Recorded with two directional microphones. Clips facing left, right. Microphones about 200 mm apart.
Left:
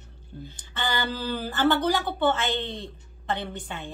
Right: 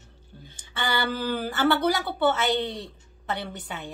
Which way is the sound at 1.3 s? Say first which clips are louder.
Left 1 dB; 10° right (ahead or behind).